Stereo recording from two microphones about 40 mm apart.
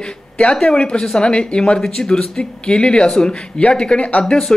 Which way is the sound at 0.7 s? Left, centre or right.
Left.